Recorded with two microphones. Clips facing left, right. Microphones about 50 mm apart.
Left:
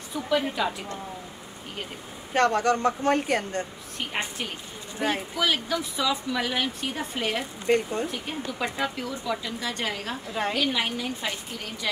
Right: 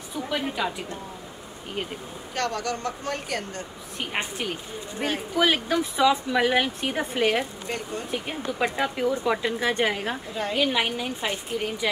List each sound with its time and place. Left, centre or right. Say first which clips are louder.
0.1 s a woman's voice: left 3 dB; centre
2.3 s speech: left 6 dB; left
4.0 s a woman's voice: right 1 dB; centre
5.4 s speech: right 5 dB; right
7.7 s speech: left 12 dB; left
8.1 s a woman's voice: right 3 dB; centre